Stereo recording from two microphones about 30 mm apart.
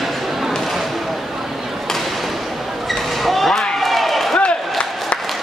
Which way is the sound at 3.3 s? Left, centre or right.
Centre.